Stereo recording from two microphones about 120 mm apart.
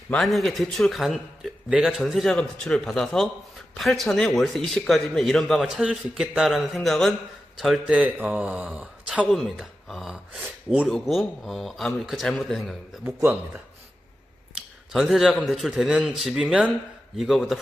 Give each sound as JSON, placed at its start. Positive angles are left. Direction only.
{"t": 0.1, "sound": "a man's voice", "side_deg": 0}
{"t": 2.0, "sound": "a man's voice", "side_deg": 0}
{"t": 10.4, "sound": "speech", "side_deg": -15}
{"t": 10.9, "sound": "a man's voice", "side_deg": 0}
{"t": 13.0, "sound": "speech", "side_deg": -20}
{"t": 14.5, "sound": "a sound", "side_deg": -5}
{"t": 15.3, "sound": "a man's voice", "side_deg": 0}